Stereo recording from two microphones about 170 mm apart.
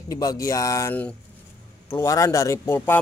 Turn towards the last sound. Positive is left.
turn(degrees=15)  # may be behind; listen again after turning